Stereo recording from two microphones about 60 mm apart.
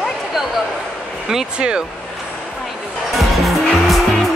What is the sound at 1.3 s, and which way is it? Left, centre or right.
Speech, centre.